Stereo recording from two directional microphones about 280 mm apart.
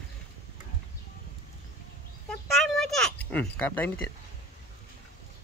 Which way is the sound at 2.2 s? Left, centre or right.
Centre.